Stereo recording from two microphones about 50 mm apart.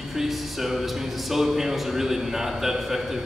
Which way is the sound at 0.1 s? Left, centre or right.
Centre.